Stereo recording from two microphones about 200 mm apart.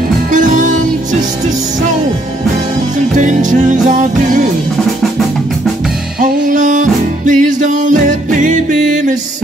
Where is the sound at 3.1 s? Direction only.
40° right (ahead or behind).